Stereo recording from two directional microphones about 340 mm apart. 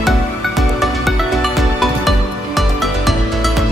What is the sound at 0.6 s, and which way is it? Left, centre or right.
Music, centre.